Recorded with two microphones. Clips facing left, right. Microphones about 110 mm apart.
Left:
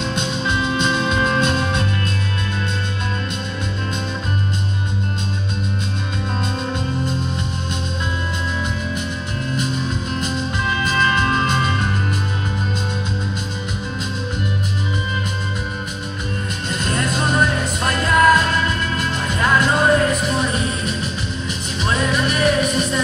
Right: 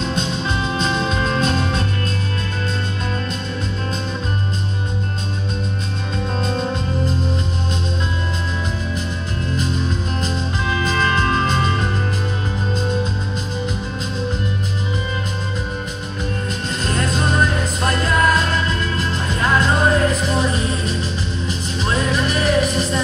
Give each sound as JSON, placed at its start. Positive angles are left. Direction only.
{"t": 0.1, "sound": "music", "side_deg": -35}
{"t": 16.8, "sound": "music", "side_deg": -30}
{"t": 22.1, "sound": "music", "side_deg": -30}